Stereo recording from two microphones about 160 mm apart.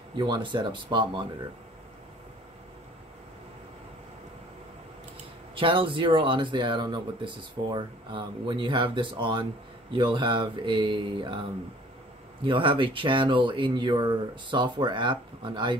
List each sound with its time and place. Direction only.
0.2 s speech: 30° right (ahead or behind)
5.5 s speech: 35° right (ahead or behind)
12.4 s speech: 30° right (ahead or behind)